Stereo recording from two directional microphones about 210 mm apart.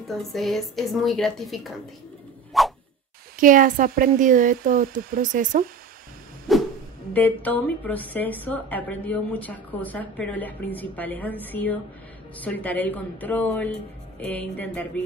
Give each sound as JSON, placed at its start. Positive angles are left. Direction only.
{"t": 0.1, "sound": "a woman's voice", "side_deg": 0}
{"t": 2.5, "sound": "whoosh", "side_deg": 0}
{"t": 3.3, "sound": "speech", "side_deg": -40}
{"t": 6.5, "sound": "music", "side_deg": 0}
{"t": 7.2, "sound": "a woman's voice", "side_deg": 10}